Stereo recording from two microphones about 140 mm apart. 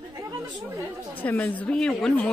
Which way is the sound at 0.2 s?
20° right (ahead or behind).